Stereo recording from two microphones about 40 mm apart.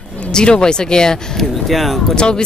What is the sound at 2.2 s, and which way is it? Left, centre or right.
Speech, left.